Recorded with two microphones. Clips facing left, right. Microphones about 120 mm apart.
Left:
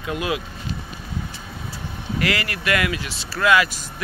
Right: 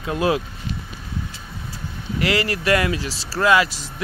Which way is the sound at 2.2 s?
25° right (ahead or behind).